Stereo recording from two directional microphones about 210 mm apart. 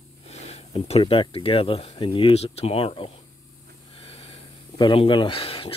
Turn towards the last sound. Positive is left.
turn(degrees=25)  # may be behind; listen again after turning